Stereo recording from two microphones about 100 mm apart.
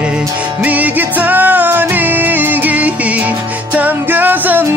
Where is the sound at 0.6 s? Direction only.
15° right (ahead or behind).